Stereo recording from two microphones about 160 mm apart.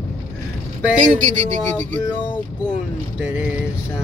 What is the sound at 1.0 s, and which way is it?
Speech, 50° right (ahead or behind).